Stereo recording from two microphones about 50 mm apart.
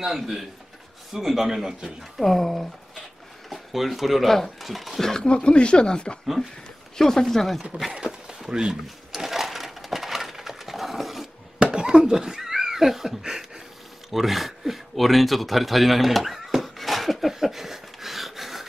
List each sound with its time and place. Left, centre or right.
0.0 s a man's voice: centre
2.1 s speech: centre
7.9 s a sound: centre
8.5 s a man's voice: centre
8.8 s sewing machine: centre
11.6 s a sound: centre